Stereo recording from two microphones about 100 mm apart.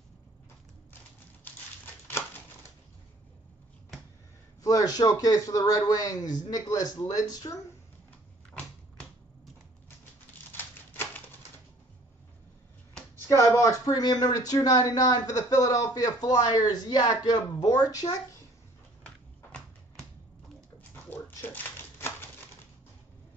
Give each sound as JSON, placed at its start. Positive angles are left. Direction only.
{"t": 2.2, "sound": "typewriter", "side_deg": 15}
{"t": 4.6, "sound": "speech", "side_deg": 40}
{"t": 10.5, "sound": "typewriter", "side_deg": 20}
{"t": 13.3, "sound": "speech", "side_deg": 30}
{"t": 19.0, "sound": "a sound", "side_deg": 10}
{"t": 20.9, "sound": "dog", "side_deg": 20}